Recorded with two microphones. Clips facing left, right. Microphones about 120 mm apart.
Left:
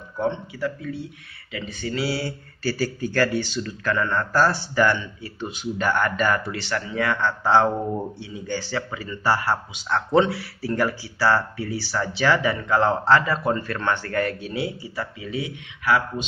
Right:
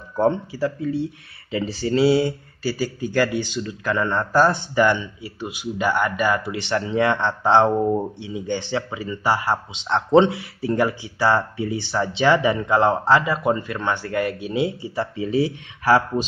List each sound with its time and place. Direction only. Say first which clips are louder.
0.2 s speech: right 5 dB; 35° right (ahead or behind)